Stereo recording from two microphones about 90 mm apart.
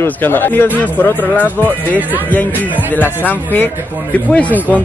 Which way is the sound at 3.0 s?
20° left (ahead or behind).